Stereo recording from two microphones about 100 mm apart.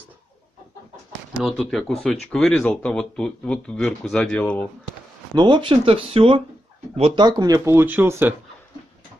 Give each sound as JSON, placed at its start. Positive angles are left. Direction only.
{"t": 1.4, "sound": "speech", "side_deg": 0}
{"t": 5.3, "sound": "speech", "side_deg": -50}
{"t": 7.2, "sound": "speech", "side_deg": -45}
{"t": 7.7, "sound": "speech", "side_deg": -20}